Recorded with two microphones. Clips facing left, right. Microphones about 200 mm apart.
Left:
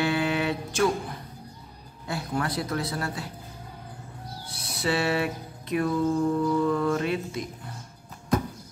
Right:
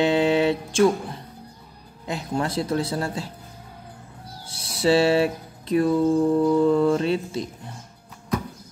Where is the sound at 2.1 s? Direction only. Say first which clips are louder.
Right 3 dB; 20° right (ahead or behind).